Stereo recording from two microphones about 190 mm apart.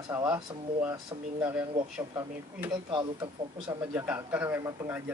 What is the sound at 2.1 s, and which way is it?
Speech, 20° right (ahead or behind).